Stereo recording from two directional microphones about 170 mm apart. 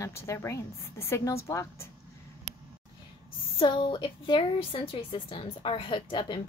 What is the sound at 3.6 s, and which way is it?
A woman's voice, 30° left (ahead or behind).